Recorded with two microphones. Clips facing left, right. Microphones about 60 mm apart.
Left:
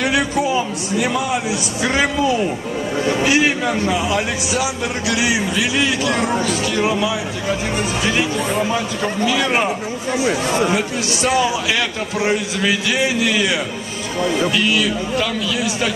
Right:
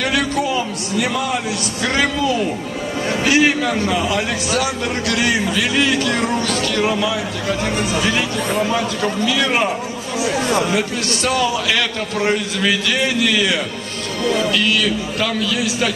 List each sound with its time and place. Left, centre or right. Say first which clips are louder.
0.0 s speech: left 1 dB; centre
10.7 s speech: even; centre